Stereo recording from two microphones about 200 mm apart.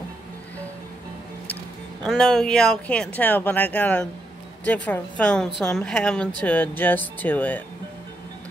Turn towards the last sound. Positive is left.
turn(degrees=10)  # may be behind; listen again after turning